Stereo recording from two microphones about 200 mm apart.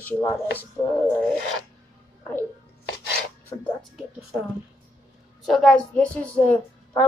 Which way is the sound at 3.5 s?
5° left (ahead or behind).